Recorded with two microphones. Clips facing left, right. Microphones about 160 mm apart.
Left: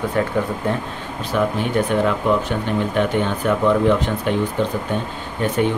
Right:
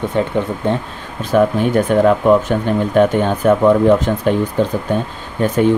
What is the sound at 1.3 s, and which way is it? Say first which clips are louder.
Speech: right 6 dB; 45° right (ahead or behind).